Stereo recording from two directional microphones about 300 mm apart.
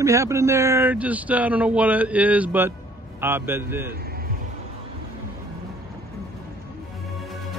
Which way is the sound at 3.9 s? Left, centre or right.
Right.